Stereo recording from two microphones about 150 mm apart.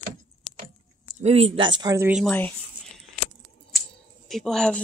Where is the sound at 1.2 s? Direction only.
40° right (ahead or behind).